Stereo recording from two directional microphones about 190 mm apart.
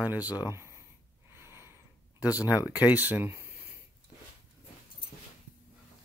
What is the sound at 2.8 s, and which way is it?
Speech, 10° right (ahead or behind).